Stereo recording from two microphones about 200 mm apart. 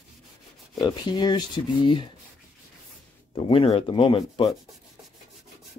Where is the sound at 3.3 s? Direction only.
25° left (ahead or behind).